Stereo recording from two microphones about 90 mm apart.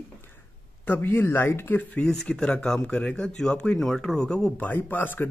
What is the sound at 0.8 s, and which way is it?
Speech, 25° left (ahead or behind).